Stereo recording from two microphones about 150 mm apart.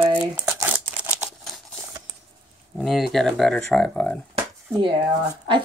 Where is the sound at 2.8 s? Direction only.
Centre (ahead or behind).